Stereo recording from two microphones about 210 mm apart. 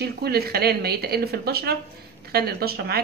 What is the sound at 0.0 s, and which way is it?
A woman's voice, 50° right (ahead or behind).